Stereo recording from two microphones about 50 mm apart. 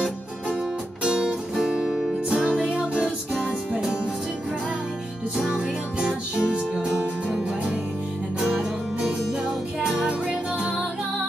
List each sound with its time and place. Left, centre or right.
1.0 s music: centre
2.6 s music: right
5.5 s music: centre
8.4 s music: centre